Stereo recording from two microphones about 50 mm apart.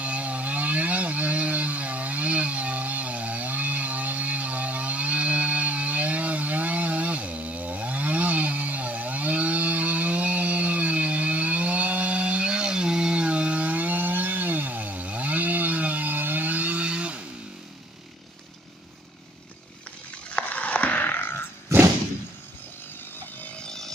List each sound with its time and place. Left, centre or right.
0.0 s vehicle: right
20.2 s a sound: left
21.7 s thump: right
23.6 s chainsaw: centre